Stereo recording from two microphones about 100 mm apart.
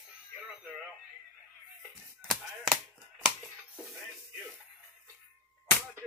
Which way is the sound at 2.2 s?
5° right (ahead or behind).